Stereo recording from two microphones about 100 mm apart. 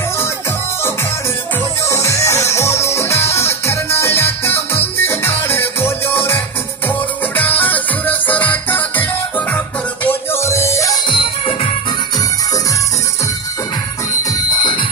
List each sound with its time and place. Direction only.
1.9 s music: 30° left (ahead or behind)
10.0 s music: 25° left (ahead or behind)
11.1 s music: 55° left (ahead or behind)
14.6 s music: 50° left (ahead or behind)